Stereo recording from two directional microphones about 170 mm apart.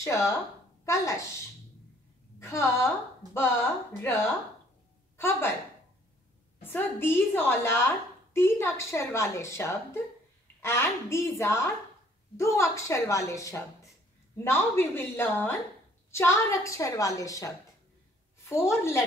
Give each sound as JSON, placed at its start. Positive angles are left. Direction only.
{"t": 0.0, "sound": "speech", "side_deg": 15}
{"t": 2.4, "sound": "a woman's voice", "side_deg": 15}
{"t": 6.6, "sound": "a woman's voice", "side_deg": 10}